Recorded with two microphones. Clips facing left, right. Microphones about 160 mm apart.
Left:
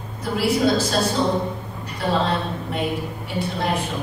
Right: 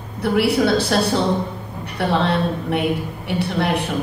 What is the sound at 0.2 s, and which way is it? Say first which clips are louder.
A woman's voice: right 3 dB; 65° right (ahead or behind).